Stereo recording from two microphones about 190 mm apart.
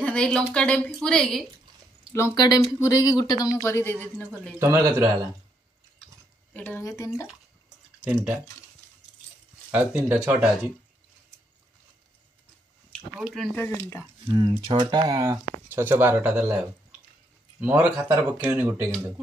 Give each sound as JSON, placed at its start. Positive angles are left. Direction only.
{"t": 0.0, "sound": "speech", "side_deg": 5}
{"t": 2.1, "sound": "speech", "side_deg": 15}
{"t": 4.6, "sound": "speech", "side_deg": -15}
{"t": 6.5, "sound": "speech", "side_deg": 10}
{"t": 8.0, "sound": "speech", "side_deg": -5}
{"t": 9.7, "sound": "speech", "side_deg": -10}
{"t": 13.1, "sound": "speech", "side_deg": 0}
{"t": 14.3, "sound": "speech", "side_deg": -25}